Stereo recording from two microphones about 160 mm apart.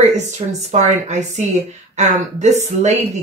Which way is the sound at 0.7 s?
45° right (ahead or behind).